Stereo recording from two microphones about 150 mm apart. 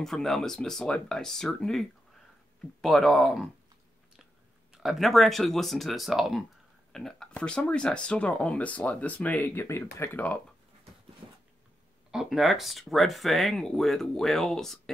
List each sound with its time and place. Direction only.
0.0 s speech: centre (ahead or behind)
4.7 s speech: centre (ahead or behind)
11.2 s a sound: 35° right (ahead or behind)
12.1 s speech: centre (ahead or behind)